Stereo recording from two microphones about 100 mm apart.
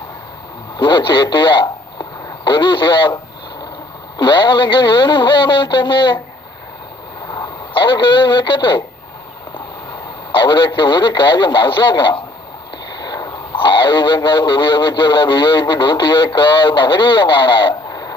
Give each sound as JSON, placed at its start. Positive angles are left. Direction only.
{"t": 0.7, "sound": "a man's voice", "side_deg": 50}
{"t": 4.2, "sound": "speech", "side_deg": 50}
{"t": 7.2, "sound": "a man's voice", "side_deg": 40}
{"t": 10.3, "sound": "a man's voice", "side_deg": 50}